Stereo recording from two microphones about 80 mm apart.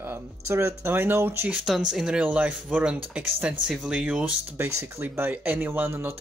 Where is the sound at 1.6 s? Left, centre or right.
Centre.